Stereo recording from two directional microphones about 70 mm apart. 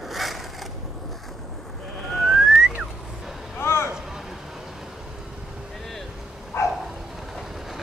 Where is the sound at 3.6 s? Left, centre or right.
Left.